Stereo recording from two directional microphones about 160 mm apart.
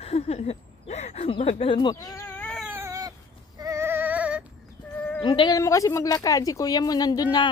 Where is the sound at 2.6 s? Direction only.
15° right (ahead or behind).